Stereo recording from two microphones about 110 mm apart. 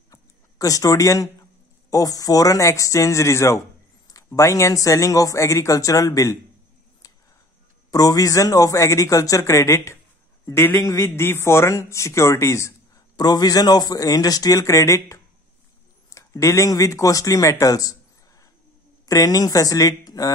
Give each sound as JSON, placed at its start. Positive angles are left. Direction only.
{"t": 0.1, "sound": "a sound", "side_deg": 30}
{"t": 1.9, "sound": "speech", "side_deg": 30}
{"t": 7.0, "sound": "a sound", "side_deg": 30}
{"t": 7.9, "sound": "speech", "side_deg": 35}
{"t": 13.1, "sound": "speech", "side_deg": 40}
{"t": 16.1, "sound": "speech", "side_deg": 25}
{"t": 19.0, "sound": "speech", "side_deg": 30}